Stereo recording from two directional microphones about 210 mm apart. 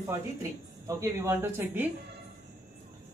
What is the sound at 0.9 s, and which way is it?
Speech, 10° right (ahead or behind).